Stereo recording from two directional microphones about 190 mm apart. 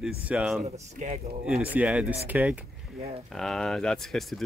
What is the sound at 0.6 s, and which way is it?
Speech, 35° right (ahead or behind).